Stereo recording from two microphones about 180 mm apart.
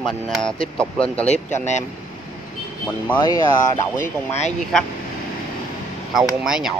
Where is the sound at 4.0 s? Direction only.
40° left (ahead or behind).